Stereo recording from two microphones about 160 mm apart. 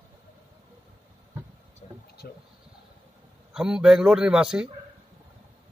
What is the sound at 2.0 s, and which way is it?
Vehicle, 80° left.